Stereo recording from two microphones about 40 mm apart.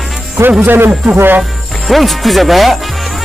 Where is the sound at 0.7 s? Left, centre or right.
Right.